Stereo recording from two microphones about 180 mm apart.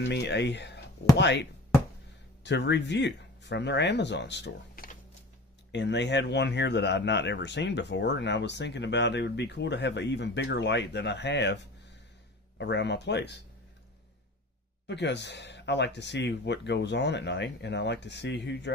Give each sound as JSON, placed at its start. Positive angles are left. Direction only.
{"t": 0.0, "sound": "speech", "side_deg": 70}
{"t": 4.8, "sound": "music", "side_deg": 55}
{"t": 5.7, "sound": "speech", "side_deg": 75}
{"t": 14.9, "sound": "speech", "side_deg": 75}